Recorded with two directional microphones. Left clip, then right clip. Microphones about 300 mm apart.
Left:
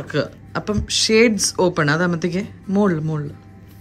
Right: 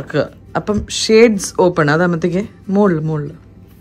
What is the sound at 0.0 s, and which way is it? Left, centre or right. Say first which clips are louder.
Speech: right 5 dB; centre.